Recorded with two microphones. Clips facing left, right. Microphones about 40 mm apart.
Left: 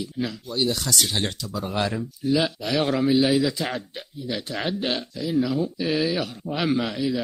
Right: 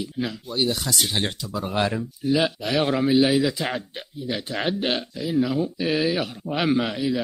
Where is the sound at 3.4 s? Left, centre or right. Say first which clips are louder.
Right 1 dB; centre.